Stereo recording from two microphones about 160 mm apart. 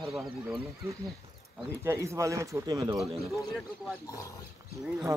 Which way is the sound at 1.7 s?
20° right (ahead or behind).